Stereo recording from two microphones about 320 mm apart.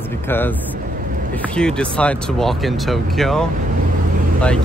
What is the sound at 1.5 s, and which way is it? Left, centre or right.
Speech, centre.